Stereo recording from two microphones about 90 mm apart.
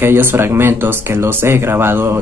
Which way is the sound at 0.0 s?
25° right (ahead or behind).